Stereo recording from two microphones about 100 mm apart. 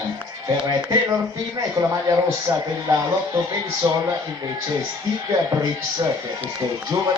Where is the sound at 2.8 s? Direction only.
35° right (ahead or behind).